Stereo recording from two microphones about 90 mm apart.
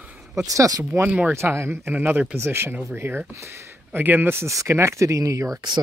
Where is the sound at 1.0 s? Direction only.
15° right (ahead or behind).